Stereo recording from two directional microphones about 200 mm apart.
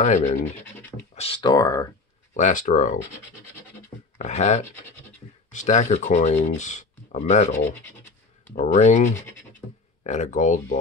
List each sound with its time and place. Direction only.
0.0 s speech: 35° left (ahead or behind)
0.6 s scratch: 10° left (ahead or behind)
1.1 s speech: 30° left (ahead or behind)
2.3 s speech: 40° left (ahead or behind)
4.2 s speech: 35° left (ahead or behind)